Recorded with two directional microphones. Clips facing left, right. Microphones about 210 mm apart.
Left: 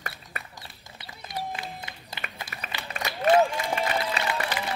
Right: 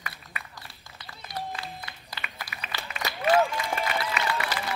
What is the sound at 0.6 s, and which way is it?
Music, 15° left (ahead or behind).